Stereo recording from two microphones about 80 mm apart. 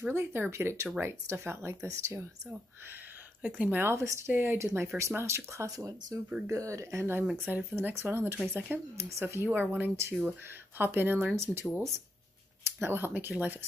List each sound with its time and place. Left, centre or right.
0.1 s speech: right
3.4 s speech: centre
3.8 s speech: right; by 8.8 s centre
8.9 s speech: right
12.8 s speech: right